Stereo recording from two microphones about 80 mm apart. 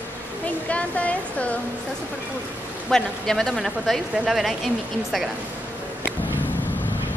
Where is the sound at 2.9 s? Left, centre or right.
Centre.